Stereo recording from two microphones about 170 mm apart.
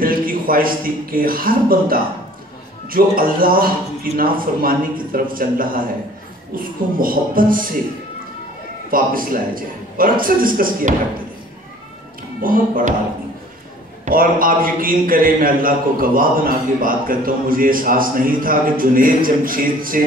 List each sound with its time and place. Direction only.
0.0 s a man's voice: 55° right (ahead or behind)
8.9 s a man's voice: 55° right (ahead or behind)
12.4 s speech: 55° right (ahead or behind)
14.0 s a man's voice: 55° right (ahead or behind)